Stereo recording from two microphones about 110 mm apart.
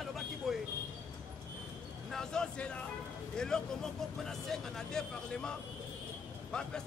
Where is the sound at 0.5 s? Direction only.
Centre (ahead or behind).